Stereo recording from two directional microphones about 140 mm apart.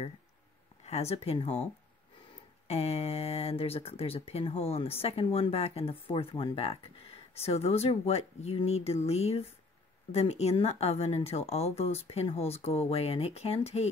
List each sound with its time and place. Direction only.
0.8 s speech: 50° left (ahead or behind)
2.7 s speech: 45° left (ahead or behind)